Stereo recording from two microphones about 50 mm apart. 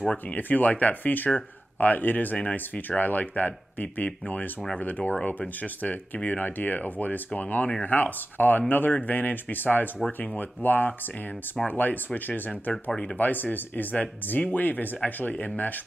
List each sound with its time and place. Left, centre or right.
0.4 s speech: left